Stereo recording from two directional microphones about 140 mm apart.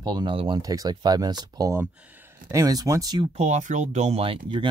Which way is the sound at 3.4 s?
60° right (ahead or behind).